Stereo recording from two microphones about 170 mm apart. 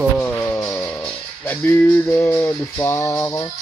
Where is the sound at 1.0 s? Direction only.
5° left (ahead or behind); by 3.5 s 20° left (ahead or behind).